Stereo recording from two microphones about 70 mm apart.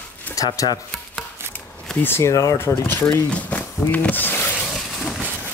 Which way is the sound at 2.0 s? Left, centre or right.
Left.